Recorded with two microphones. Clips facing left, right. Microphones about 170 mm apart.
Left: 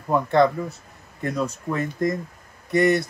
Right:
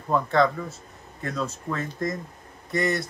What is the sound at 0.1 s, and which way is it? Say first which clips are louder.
Speech: left 3 dB; 20° left (ahead or behind).